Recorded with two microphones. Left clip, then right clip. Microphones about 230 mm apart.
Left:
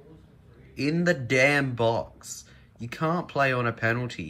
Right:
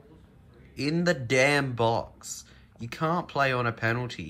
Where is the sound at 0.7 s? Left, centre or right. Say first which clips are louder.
Left 2 dB; centre.